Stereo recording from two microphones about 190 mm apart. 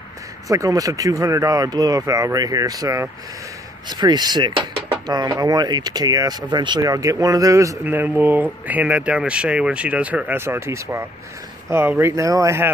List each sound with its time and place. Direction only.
0.5 s speech: 20° right (ahead or behind)